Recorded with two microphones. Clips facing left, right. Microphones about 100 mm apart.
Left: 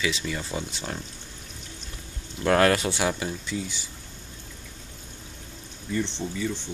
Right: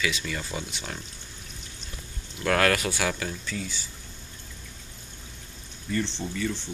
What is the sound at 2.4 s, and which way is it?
Speech, 25° left (ahead or behind).